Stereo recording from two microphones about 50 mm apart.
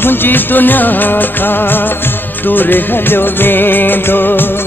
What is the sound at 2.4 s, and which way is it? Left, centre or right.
Music, left.